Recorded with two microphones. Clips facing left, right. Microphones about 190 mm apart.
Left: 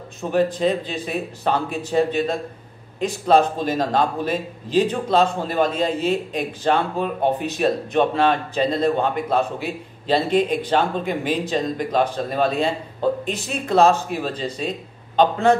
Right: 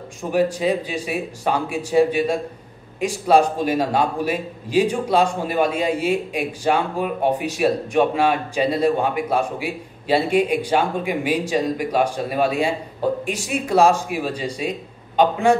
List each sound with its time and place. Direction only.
0.2 s a man's voice: 10° right (ahead or behind)